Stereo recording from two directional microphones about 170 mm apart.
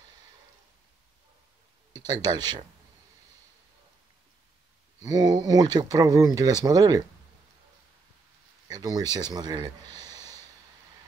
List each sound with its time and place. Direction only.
2.0 s speech: 25° right (ahead or behind)
5.0 s speech: 20° right (ahead or behind)
8.6 s speech: 20° right (ahead or behind)